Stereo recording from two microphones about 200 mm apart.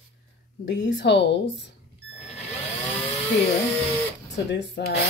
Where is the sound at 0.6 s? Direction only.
60° left (ahead or behind).